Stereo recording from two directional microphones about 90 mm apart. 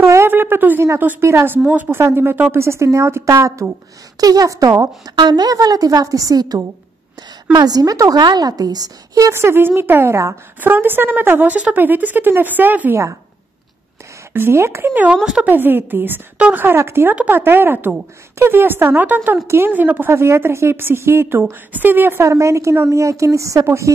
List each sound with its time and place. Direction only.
0.0 s a sound: 30° right (ahead or behind)
0.8 s a woman's voice: 30° right (ahead or behind)
5.1 s a woman's voice: 55° right (ahead or behind)
9.3 s a woman's voice: 25° right (ahead or behind)
14.3 s a woman's voice: 25° right (ahead or behind)
15.2 s a woman's voice: 10° right (ahead or behind)
15.5 s a woman's voice: 20° right (ahead or behind)